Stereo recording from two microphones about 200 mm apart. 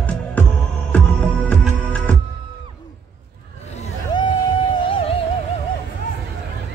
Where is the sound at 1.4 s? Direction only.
5° left (ahead or behind).